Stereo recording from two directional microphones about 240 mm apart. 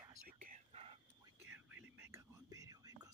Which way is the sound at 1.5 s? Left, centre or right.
Centre.